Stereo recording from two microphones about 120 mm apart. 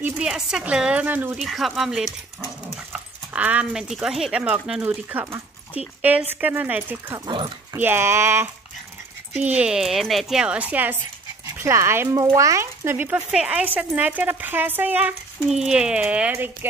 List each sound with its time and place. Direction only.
0.2 s speech: 5° right (ahead or behind)
1.4 s speech: centre (ahead or behind)
7.2 s speech: 40° right (ahead or behind)
7.7 s speech: 20° right (ahead or behind)